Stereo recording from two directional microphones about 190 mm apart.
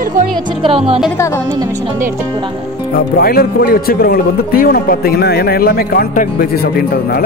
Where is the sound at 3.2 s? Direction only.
50° left (ahead or behind).